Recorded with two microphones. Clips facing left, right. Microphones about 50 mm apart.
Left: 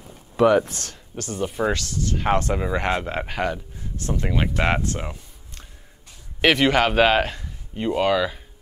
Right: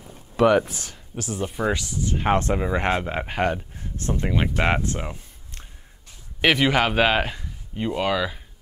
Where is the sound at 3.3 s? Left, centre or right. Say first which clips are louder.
Right 2 dB; right.